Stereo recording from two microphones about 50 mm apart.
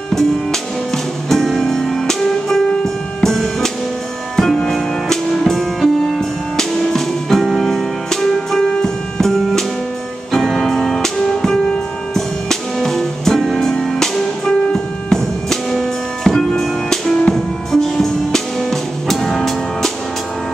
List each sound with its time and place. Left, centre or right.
0.1 s music: centre
10.3 s music: centre